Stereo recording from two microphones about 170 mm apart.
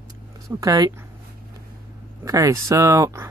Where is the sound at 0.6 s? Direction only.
20° right (ahead or behind).